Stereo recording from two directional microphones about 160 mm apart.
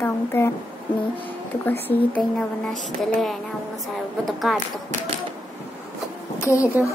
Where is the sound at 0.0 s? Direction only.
15° left (ahead or behind).